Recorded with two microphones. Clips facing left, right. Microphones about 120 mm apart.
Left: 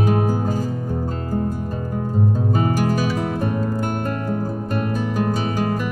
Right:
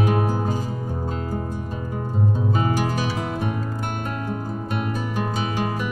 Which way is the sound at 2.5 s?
45° left (ahead or behind).